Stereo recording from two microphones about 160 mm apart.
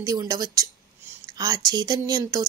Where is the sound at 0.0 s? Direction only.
25° right (ahead or behind).